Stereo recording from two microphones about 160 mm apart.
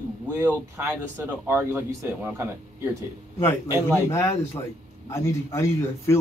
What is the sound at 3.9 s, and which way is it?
A man's voice, 15° left (ahead or behind).